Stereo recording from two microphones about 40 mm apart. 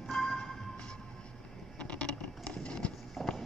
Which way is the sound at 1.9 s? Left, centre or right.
Left.